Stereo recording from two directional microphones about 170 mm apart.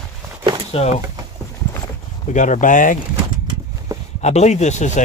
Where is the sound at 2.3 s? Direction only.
45° left (ahead or behind).